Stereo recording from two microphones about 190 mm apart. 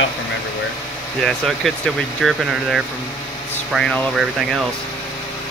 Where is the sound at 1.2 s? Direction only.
Centre (ahead or behind).